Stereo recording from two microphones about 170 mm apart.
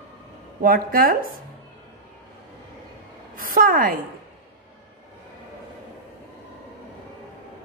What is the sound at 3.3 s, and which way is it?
Speech, 55° right (ahead or behind).